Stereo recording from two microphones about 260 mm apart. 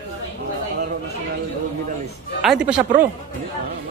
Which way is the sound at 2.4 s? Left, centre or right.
Centre.